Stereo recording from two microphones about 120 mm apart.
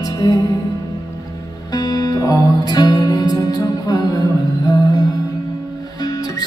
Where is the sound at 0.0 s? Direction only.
30° left (ahead or behind).